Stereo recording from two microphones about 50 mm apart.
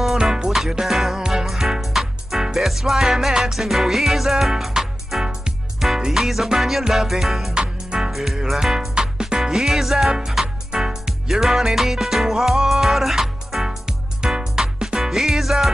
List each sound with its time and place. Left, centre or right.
0.0 s music: centre
5.2 s music: centre
7.5 s music: centre
8.1 s music: centre
8.9 s music: centre